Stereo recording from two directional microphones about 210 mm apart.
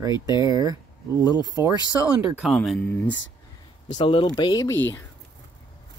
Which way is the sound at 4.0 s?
25° left (ahead or behind).